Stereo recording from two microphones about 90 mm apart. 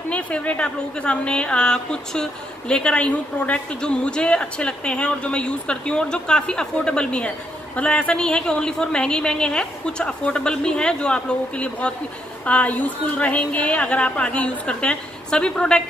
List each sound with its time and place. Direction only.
0.1 s a woman's voice: 15° left (ahead or behind)